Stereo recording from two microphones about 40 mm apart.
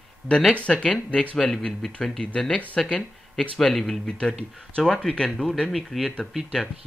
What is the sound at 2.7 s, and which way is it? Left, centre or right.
Speech, left.